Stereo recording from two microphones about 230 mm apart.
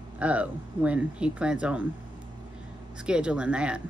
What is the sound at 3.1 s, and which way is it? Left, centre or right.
Speech, centre.